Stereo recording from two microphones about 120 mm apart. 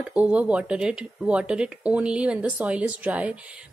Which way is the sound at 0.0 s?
10° right (ahead or behind).